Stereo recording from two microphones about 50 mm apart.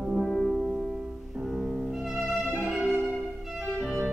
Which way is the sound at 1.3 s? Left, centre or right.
Centre.